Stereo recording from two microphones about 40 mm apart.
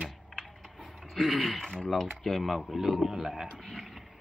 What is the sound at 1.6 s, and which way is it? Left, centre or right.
Speech, centre.